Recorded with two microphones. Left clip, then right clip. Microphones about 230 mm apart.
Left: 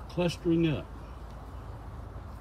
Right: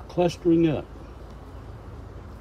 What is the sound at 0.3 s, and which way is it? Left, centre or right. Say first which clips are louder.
Speech: right 6 dB; right.